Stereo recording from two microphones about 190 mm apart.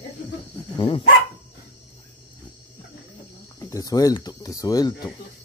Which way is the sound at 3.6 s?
20° left (ahead or behind).